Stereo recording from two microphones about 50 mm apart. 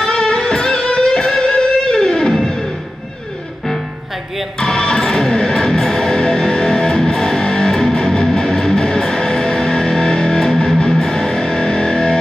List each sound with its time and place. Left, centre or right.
0.0 s music: centre
4.6 s music: centre